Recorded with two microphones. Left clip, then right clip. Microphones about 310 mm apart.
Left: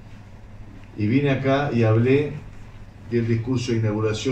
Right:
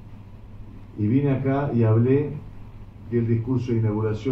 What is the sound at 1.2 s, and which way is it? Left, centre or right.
Speech, left.